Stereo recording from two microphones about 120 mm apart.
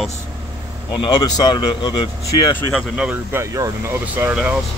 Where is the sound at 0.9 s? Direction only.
35° left (ahead or behind).